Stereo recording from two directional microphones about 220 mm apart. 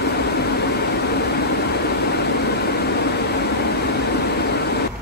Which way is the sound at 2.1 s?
50° left (ahead or behind).